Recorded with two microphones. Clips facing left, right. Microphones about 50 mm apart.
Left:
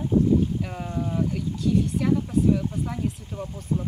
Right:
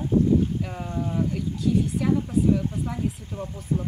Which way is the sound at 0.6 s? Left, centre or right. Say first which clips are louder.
Even; centre.